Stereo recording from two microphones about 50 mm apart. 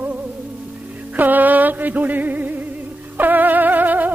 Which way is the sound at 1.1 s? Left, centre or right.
Right.